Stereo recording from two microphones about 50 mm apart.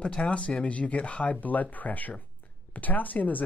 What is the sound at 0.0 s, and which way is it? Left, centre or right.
Speech, left.